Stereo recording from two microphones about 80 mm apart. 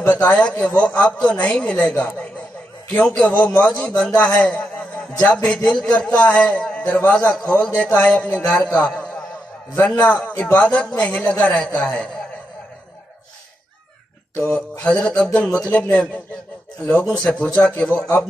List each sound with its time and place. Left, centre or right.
0.0 s a man's voice: centre
2.0 s a sound: centre
3.2 s a man's voice: centre
14.4 s a man's voice: centre